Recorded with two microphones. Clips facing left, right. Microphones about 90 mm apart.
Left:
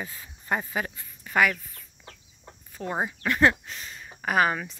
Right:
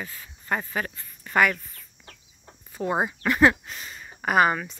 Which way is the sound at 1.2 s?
Centre (ahead or behind).